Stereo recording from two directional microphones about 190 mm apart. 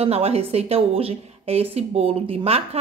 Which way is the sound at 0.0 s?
30° right (ahead or behind).